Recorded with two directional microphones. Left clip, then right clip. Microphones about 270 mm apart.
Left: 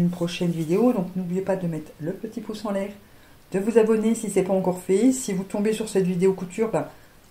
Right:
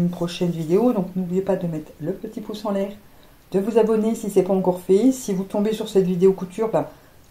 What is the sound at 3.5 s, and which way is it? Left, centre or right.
Speech, left.